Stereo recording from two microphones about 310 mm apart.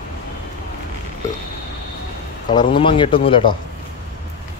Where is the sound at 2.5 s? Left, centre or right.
Centre.